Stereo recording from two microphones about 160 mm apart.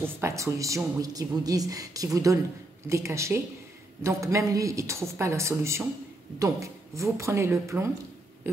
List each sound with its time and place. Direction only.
0.0 s a woman's voice: 15° right (ahead or behind)